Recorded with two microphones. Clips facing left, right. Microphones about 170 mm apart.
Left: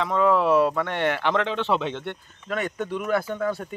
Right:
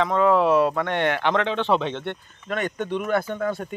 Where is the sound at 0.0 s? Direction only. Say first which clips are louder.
Right 2 dB; 5° left (ahead or behind).